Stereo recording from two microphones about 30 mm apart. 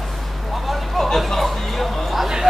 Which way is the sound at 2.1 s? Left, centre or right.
Centre.